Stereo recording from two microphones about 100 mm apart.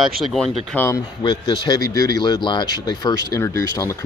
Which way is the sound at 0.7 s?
15° left (ahead or behind).